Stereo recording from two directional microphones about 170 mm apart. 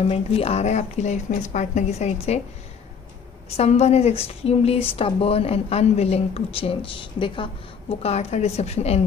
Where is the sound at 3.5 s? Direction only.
40° left (ahead or behind).